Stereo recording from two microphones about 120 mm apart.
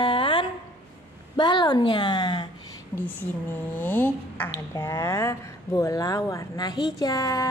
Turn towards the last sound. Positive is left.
turn(degrees=30)  # may be behind; listen again after turning